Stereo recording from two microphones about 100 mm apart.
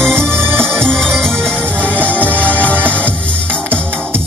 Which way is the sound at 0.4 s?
25° right (ahead or behind).